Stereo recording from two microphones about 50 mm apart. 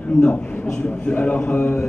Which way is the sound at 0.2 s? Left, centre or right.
Centre.